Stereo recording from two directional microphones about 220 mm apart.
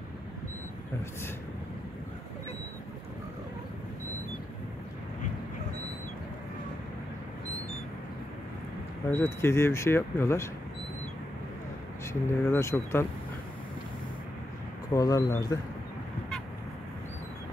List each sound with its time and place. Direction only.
9.1 s speech: 10° left (ahead or behind)
12.1 s speech: 15° left (ahead or behind)
15.0 s speech: 15° left (ahead or behind)